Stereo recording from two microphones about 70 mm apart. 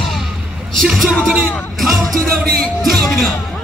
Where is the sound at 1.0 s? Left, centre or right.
Centre.